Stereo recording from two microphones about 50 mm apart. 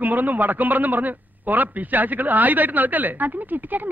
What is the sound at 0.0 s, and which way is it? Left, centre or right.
A man's voice, right.